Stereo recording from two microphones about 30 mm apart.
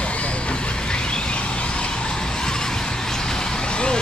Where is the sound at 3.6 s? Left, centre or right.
Left.